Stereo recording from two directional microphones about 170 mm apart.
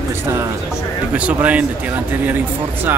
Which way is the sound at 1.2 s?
10° right (ahead or behind).